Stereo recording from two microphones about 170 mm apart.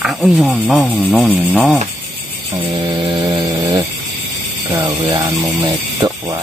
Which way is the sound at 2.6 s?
30° right (ahead or behind).